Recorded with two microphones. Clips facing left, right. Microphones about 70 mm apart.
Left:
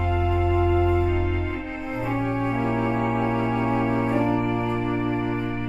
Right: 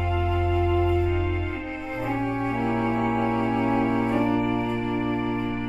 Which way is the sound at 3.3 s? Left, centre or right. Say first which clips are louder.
Even; centre.